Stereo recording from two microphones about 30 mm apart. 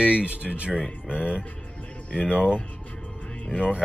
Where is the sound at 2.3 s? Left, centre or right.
Right.